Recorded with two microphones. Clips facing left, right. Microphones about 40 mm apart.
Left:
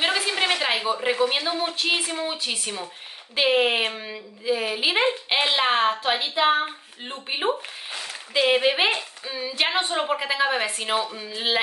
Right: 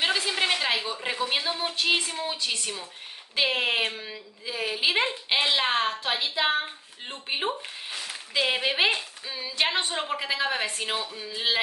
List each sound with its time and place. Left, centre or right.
0.0 s a woman's voice: centre
2.1 s a woman's voice: centre